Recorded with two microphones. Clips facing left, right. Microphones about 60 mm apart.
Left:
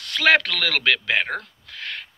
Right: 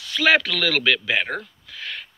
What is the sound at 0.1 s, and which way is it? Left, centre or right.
Speech, left.